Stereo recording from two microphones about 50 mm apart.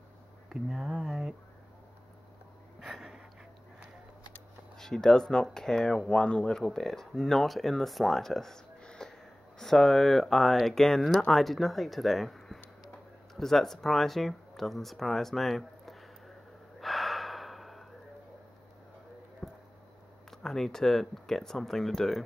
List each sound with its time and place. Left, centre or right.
0.5 s speech: centre
2.8 s a sound: centre
4.7 s speech: centre
6.5 s speech: centre
16.8 s gasp: centre
19.4 s basketball bounce: centre
20.2 s speech: centre